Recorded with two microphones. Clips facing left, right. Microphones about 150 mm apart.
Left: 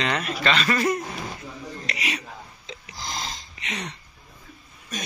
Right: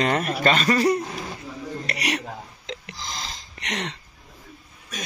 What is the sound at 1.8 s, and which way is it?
Hiccup, 70° right (ahead or behind).